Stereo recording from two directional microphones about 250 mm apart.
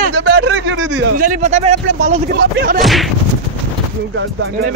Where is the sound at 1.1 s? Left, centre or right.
Right.